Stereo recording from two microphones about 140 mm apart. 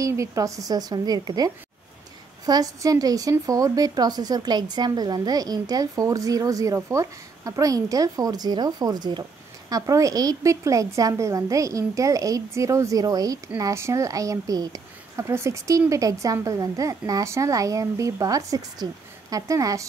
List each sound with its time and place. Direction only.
0.0 s speech: 20° right (ahead or behind)